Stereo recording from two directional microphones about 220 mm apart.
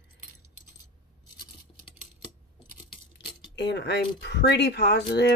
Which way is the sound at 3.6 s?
50° left (ahead or behind).